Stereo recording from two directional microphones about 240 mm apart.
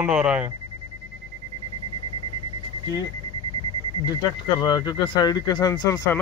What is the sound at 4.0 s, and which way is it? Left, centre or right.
Speech, centre.